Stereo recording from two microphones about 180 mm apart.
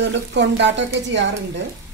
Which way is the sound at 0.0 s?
80° right.